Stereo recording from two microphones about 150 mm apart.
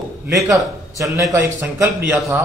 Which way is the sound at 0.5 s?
20° right (ahead or behind).